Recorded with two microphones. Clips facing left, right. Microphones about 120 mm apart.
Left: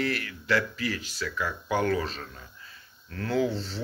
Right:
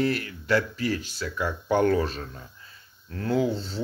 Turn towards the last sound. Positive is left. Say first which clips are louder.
# right 2 dB
turn(degrees=-25)  # may be behind; listen again after turning